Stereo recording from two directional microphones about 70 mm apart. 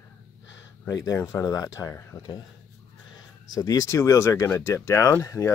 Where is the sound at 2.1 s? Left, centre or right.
Left.